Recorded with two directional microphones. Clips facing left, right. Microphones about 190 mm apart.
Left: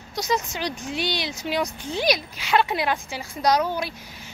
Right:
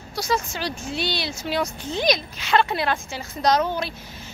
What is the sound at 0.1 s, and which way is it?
A woman's voice, 20° left (ahead or behind).